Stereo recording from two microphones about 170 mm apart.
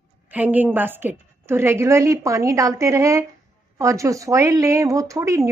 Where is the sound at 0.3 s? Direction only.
10° right (ahead or behind).